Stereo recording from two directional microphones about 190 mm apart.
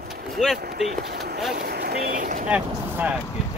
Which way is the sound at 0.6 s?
55° right (ahead or behind).